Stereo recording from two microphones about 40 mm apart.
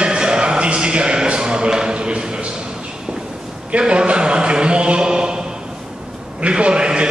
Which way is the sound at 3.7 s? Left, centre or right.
Right.